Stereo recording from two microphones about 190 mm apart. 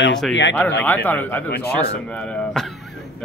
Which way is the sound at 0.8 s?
10° left (ahead or behind).